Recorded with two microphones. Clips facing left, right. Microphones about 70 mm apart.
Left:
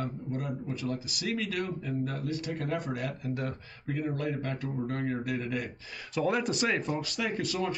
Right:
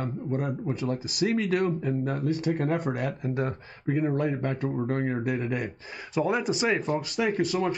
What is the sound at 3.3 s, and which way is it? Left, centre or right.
Speech, right.